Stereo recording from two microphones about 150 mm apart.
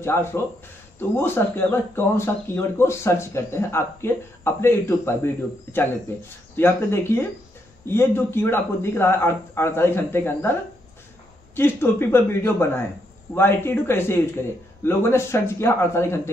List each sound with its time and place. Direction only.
0.0 s speech: 15° left (ahead or behind)